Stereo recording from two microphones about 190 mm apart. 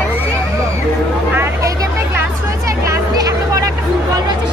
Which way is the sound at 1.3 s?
15° right (ahead or behind).